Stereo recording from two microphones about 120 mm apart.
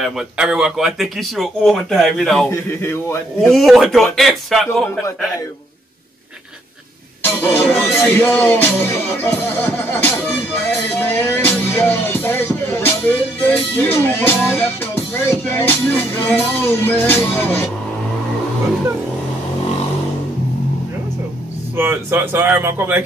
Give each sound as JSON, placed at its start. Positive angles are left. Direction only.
{"t": 0.0, "sound": "speech", "side_deg": -5}
{"t": 2.5, "sound": "speech", "side_deg": 20}
{"t": 3.4, "sound": "speech", "side_deg": 0}
{"t": 7.2, "sound": "speech", "side_deg": 15}
{"t": 8.0, "sound": "music", "side_deg": 20}
{"t": 13.7, "sound": "speech", "side_deg": 20}
{"t": 14.5, "sound": "music", "side_deg": 15}
{"t": 21.7, "sound": "speech", "side_deg": -20}